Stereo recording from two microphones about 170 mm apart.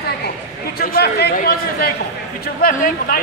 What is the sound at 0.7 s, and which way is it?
A man's voice, 65° left (ahead or behind).